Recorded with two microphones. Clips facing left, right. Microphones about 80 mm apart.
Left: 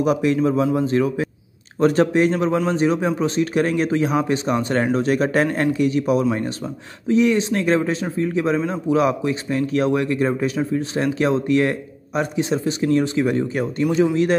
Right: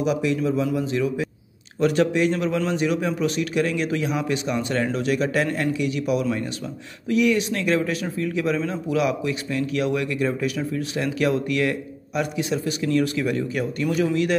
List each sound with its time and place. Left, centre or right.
0.0 s a man's voice: left